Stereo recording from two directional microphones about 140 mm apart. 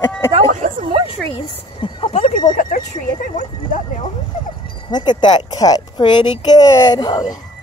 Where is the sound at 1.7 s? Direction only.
40° left (ahead or behind).